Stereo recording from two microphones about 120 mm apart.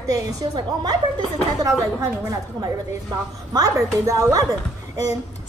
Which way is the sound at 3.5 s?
30° right (ahead or behind).